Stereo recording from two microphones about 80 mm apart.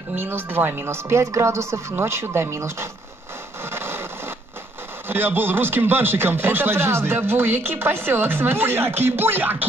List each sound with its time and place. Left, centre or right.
0.1 s speech: right
3.7 s a sound: right
5.0 s speech: right